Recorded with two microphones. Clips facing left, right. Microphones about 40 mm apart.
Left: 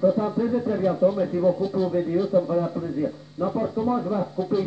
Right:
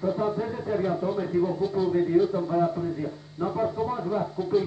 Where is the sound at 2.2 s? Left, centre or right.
Centre.